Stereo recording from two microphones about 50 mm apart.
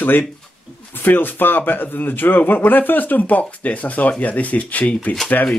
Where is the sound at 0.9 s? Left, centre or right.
Left.